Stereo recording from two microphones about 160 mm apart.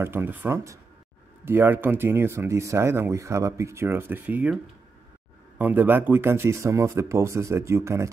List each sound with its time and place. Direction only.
0.0 s speech: 15° right (ahead or behind)
5.6 s speech: 10° right (ahead or behind)